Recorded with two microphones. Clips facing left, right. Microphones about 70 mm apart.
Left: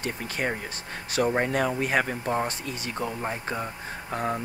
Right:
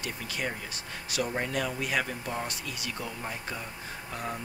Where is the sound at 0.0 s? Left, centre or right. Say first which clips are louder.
Left 5 dB; left.